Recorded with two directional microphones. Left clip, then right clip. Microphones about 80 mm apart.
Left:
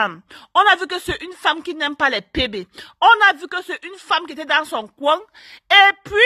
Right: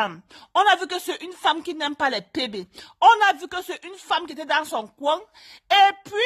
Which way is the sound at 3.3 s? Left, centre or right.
Centre.